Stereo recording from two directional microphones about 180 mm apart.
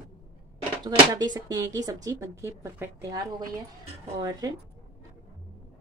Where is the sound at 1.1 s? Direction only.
20° right (ahead or behind).